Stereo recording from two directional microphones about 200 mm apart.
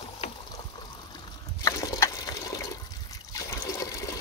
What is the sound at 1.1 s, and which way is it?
Water, 20° left (ahead or behind).